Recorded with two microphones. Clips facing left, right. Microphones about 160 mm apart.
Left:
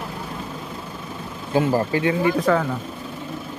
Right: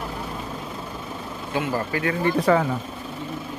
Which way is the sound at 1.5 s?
35° left (ahead or behind).